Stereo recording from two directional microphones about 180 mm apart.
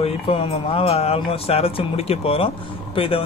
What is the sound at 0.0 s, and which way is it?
Speech, 30° left (ahead or behind).